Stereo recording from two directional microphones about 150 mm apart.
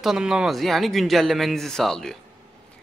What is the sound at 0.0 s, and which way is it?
A man's voice, 5° right (ahead or behind).